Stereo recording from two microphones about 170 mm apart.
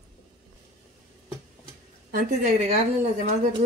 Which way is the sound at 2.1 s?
55° right (ahead or behind).